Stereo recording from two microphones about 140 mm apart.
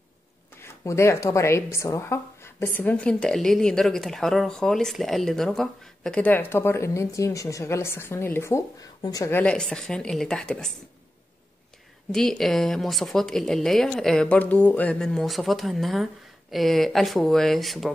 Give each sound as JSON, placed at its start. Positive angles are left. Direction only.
{"t": 0.6, "sound": "a woman's voice", "side_deg": 20}
{"t": 9.3, "sound": "speech", "side_deg": 10}
{"t": 12.1, "sound": "speech", "side_deg": 5}